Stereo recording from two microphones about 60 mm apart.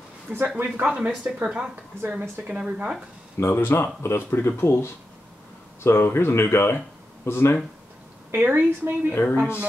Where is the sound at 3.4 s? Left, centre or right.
Left.